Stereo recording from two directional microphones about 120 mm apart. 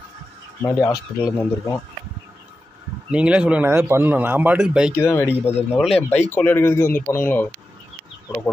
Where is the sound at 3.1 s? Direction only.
10° right (ahead or behind).